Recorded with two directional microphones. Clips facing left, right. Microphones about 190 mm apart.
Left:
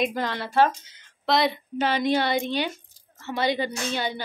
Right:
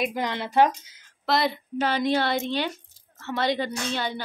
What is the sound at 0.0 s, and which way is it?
Speech, 15° right (ahead or behind).